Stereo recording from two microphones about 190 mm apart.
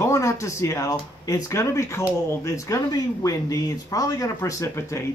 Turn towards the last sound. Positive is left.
turn(degrees=15)  # may be behind; listen again after turning